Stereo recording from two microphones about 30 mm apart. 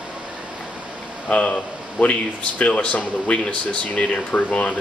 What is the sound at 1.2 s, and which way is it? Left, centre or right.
Speech, left.